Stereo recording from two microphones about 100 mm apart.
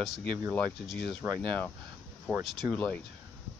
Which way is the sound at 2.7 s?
15° left (ahead or behind).